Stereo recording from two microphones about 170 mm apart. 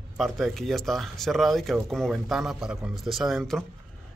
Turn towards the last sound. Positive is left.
turn(degrees=0)  # may be behind; listen again after turning